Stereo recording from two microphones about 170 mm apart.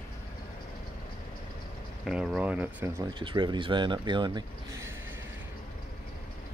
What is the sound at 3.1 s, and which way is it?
Speech, 25° right (ahead or behind).